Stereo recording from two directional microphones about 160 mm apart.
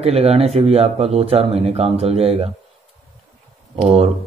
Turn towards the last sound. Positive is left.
turn(degrees=-40)  # may be behind; listen again after turning